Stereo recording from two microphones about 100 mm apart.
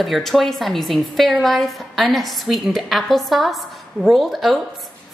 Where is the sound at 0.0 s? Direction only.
Centre (ahead or behind).